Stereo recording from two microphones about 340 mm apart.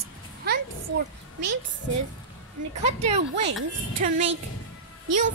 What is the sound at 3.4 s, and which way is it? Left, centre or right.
Speech, right.